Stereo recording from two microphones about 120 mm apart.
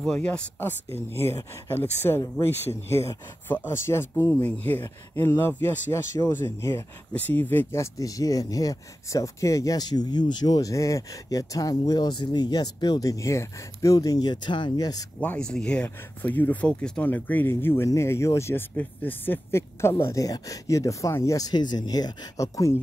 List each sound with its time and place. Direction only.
0.0 s speech: 10° left (ahead or behind); by 15.0 s 30° left (ahead or behind)
15.1 s speech: 10° left (ahead or behind); by 22.8 s 25° left (ahead or behind)